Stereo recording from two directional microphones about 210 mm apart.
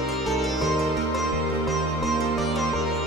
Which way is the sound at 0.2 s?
Centre (ahead or behind).